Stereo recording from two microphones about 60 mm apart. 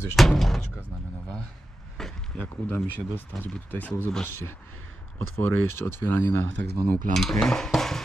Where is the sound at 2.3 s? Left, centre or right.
Left.